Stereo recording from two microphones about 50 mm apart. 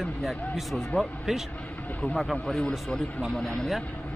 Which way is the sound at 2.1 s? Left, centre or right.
Centre.